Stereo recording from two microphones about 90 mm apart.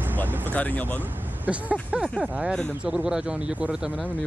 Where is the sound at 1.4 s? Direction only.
15° right (ahead or behind).